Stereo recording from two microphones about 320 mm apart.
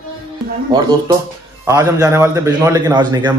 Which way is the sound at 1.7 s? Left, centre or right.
Centre.